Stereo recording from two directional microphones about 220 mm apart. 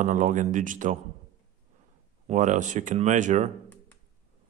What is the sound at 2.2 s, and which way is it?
A man's voice, 35° right (ahead or behind).